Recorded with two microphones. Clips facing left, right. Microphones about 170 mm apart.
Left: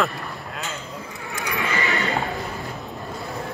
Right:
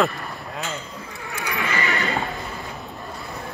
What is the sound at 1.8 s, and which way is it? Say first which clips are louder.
Horse: even; centre (ahead or behind).